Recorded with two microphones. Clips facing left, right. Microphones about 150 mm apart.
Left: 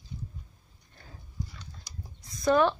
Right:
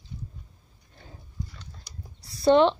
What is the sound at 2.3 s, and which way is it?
Speech, 30° right (ahead or behind).